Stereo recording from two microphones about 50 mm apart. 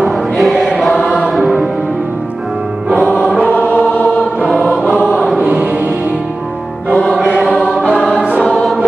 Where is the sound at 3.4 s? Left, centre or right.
Left.